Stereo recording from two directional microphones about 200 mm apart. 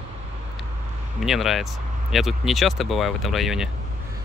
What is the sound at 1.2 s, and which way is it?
Speech, centre (ahead or behind).